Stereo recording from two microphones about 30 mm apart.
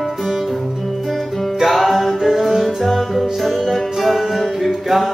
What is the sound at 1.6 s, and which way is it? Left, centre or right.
Music, centre.